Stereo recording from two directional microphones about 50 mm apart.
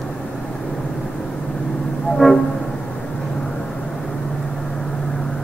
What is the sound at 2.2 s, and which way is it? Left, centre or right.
Train, centre.